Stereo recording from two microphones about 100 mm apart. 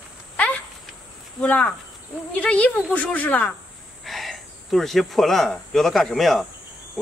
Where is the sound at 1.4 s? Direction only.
15° left (ahead or behind).